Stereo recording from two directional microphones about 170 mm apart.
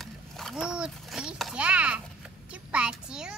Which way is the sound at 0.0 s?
Centre (ahead or behind).